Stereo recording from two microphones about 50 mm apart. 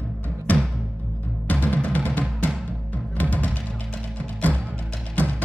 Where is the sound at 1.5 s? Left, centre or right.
Left.